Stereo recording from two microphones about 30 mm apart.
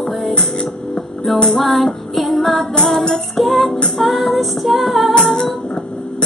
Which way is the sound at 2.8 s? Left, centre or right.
Centre.